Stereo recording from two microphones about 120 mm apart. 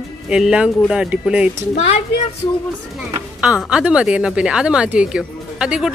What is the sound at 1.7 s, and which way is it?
Speech, 60° left (ahead or behind).